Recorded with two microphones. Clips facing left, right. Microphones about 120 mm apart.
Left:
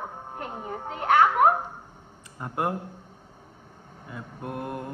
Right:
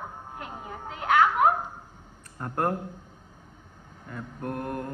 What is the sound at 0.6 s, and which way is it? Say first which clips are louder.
Children playing: left 5 dB; 40° left (ahead or behind).